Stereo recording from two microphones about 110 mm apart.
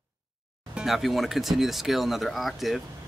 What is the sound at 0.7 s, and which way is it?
Speech, centre (ahead or behind).